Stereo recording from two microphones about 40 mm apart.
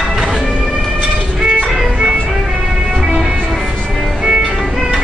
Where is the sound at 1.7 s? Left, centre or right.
Centre.